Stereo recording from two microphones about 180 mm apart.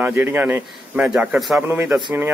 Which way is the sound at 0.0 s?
10° right (ahead or behind).